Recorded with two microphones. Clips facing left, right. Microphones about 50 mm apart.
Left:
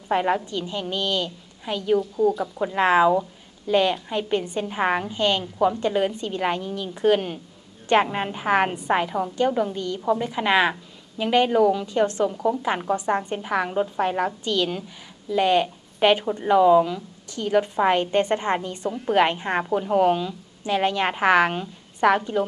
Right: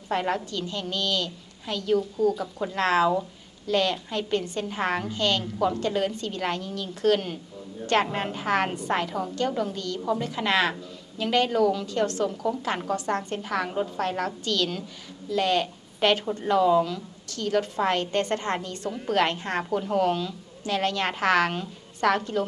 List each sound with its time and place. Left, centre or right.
0.1 s a woman's voice: centre